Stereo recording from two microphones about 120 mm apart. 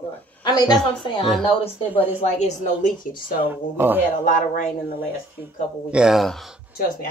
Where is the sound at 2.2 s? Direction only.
80° left.